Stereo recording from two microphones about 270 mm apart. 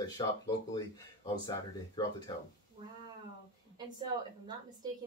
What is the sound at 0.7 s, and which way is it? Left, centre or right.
Speech, centre.